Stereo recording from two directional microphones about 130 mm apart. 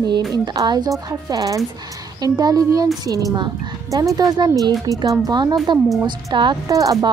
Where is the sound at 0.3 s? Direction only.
30° right (ahead or behind).